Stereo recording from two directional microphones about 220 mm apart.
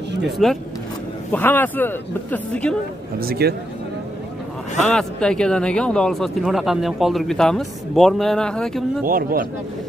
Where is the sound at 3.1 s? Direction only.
45° right (ahead or behind).